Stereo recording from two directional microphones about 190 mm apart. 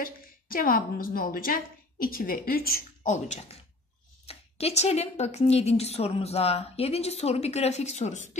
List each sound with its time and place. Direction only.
0.0 s a woman's voice: 50° left (ahead or behind)